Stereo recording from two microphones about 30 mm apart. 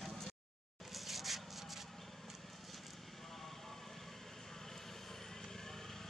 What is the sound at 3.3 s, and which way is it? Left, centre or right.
Vehicle, centre.